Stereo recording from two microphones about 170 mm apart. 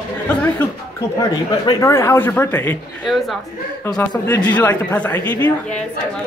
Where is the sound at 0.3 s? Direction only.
10° left (ahead or behind).